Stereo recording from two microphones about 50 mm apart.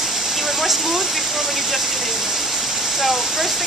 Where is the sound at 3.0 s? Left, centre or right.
Centre.